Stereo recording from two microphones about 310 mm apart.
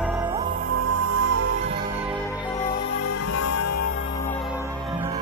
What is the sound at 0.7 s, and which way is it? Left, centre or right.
Music, right.